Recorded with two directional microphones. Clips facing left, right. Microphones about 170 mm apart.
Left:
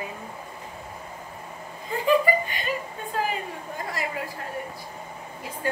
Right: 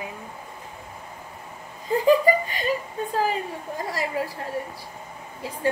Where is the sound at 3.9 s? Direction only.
35° right (ahead or behind).